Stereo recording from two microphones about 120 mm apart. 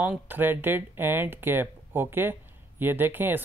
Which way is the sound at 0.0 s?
15° right (ahead or behind).